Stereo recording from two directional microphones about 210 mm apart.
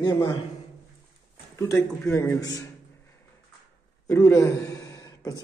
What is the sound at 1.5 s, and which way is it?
A man's voice, 15° left (ahead or behind).